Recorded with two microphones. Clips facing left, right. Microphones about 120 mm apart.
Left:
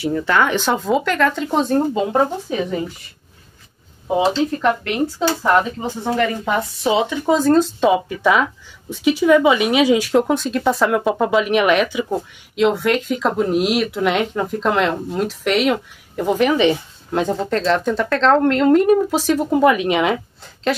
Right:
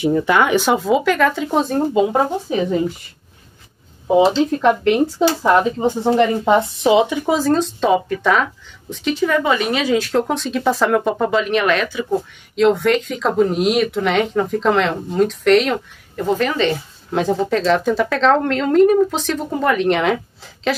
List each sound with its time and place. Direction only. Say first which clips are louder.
0.0 s speech: right 2 dB; 15° right (ahead or behind)
4.6 s speech: right 4 dB; 20° right (ahead or behind)
6.9 s speech: right 2 dB; 15° right (ahead or behind)
7.3 s speech: left 4 dB; centre (ahead or behind)
12.5 s speech: right 2 dB; 5° left (ahead or behind)
16.7 s speech: right 1 dB; centre (ahead or behind)